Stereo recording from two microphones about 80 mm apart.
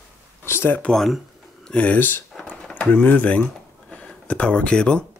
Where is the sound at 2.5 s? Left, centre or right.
Centre.